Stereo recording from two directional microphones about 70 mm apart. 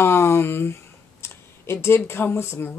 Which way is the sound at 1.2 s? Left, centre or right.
Left.